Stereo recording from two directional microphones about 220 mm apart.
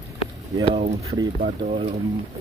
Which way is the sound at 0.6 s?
30° right (ahead or behind).